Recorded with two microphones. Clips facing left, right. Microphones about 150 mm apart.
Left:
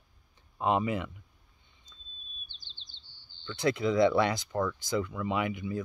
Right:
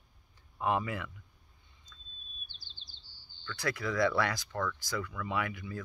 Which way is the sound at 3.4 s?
20° left (ahead or behind).